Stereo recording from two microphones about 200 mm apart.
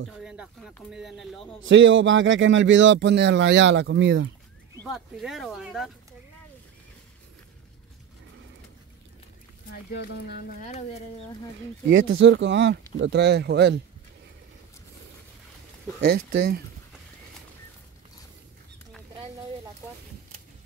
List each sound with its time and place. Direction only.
0.2 s speech: centre (ahead or behind)
1.6 s speech: 70° right (ahead or behind)
4.8 s speech: centre (ahead or behind)
9.7 s speech: 55° left (ahead or behind)
10.6 s speech: 35° left (ahead or behind)
11.9 s speech: 75° right (ahead or behind); by 13.7 s 55° right (ahead or behind)
16.0 s speech: 50° right (ahead or behind)